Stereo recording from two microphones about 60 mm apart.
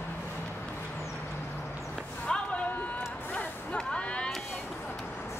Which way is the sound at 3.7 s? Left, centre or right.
Centre.